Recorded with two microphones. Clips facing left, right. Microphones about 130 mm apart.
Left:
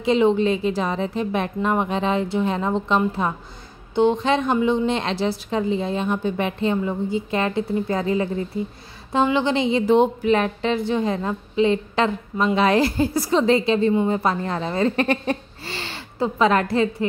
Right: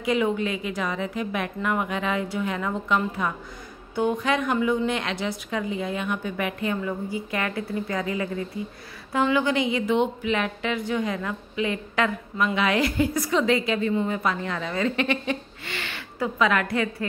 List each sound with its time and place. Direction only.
0.0 s a woman's voice: 25° left (ahead or behind)